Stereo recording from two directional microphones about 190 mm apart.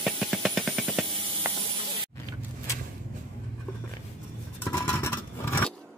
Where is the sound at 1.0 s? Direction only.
25° right (ahead or behind).